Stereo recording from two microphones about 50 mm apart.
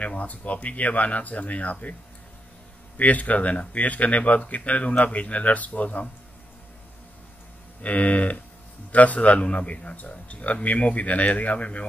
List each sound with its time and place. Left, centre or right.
0.1 s speech: left
3.0 s speech: left
7.8 s speech: left